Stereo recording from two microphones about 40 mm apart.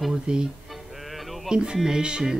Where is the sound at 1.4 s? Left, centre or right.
Centre.